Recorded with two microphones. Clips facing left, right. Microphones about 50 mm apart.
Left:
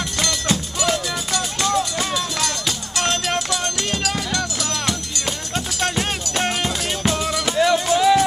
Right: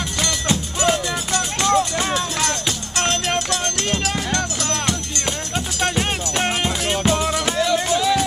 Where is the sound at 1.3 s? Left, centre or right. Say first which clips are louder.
Right 3 dB; right.